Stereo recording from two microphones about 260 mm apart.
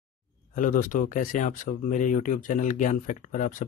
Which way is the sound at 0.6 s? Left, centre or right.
Left.